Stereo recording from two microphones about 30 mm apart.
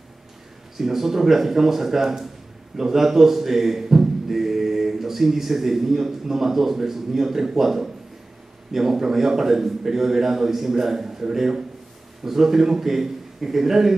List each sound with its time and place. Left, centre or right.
0.7 s speech: centre